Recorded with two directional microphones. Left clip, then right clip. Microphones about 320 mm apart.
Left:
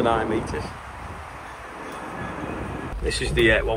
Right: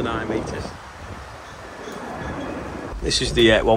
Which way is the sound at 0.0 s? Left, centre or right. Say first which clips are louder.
Left 3 dB; centre.